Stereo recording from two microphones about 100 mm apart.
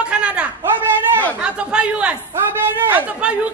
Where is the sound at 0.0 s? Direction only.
10° right (ahead or behind).